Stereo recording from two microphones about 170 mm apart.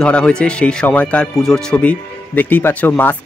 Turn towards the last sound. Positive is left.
turn(degrees=10)  # may be behind; listen again after turning